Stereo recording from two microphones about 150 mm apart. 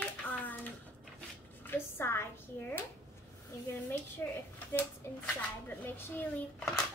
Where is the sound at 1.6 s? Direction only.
15° left (ahead or behind).